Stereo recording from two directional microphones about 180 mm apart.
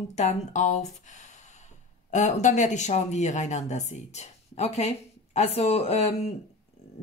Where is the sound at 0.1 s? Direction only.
40° left (ahead or behind).